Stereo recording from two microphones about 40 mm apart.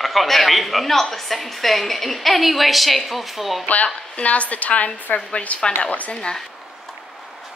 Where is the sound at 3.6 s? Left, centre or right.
Left.